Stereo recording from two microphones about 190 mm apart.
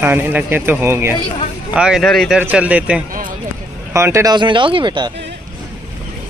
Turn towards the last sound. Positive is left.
turn(degrees=-25)  # may be behind; listen again after turning